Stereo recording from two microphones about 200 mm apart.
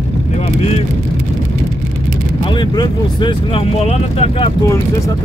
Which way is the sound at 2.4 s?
20° left (ahead or behind).